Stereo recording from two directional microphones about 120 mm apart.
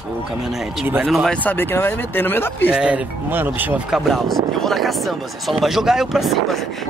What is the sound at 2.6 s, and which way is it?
Speech, 10° right (ahead or behind).